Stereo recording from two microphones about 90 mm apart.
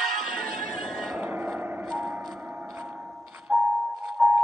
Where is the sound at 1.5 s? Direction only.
15° right (ahead or behind).